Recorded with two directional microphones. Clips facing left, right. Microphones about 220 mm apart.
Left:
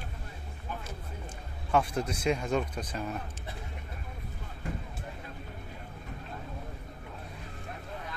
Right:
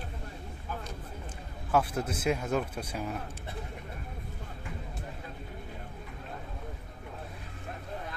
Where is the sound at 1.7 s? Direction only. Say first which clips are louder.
Even; 5° right (ahead or behind).